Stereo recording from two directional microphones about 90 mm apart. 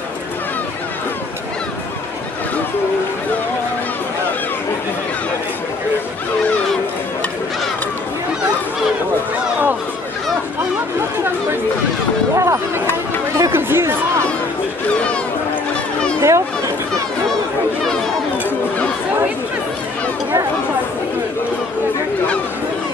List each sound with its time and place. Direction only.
12.4 s a sound: 35° right (ahead or behind)
13.4 s chatter: 25° right (ahead or behind)
16.2 s children playing: 35° right (ahead or behind)